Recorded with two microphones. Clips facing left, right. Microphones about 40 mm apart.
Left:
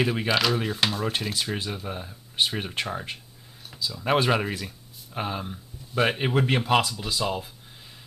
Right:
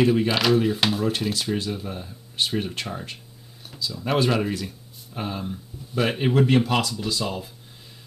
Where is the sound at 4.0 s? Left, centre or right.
Centre.